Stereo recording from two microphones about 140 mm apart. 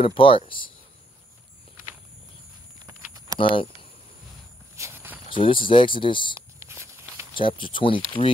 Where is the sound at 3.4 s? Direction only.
40° left (ahead or behind).